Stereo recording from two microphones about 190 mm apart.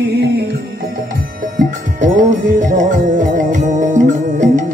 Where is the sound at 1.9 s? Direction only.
45° right (ahead or behind).